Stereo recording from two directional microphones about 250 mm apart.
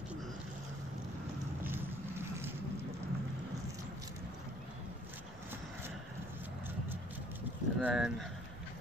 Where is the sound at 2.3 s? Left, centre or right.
Centre.